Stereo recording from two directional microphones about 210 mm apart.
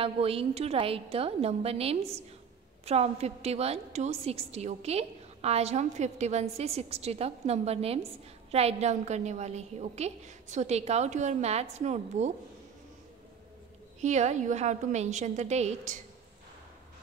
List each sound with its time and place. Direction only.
0.0 s a woman's voice: 25° right (ahead or behind)
14.0 s a woman's voice: 35° right (ahead or behind)